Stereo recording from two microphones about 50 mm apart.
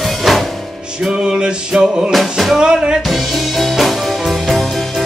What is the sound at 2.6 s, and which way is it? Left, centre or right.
Music, centre.